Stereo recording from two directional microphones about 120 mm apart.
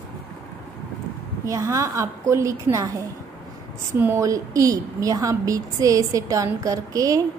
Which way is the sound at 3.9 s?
20° right (ahead or behind).